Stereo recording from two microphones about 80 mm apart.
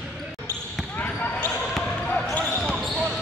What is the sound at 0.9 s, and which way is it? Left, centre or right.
Basketball bounce, centre.